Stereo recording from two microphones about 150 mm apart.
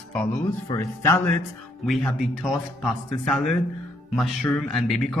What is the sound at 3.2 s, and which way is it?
Speech, centre (ahead or behind).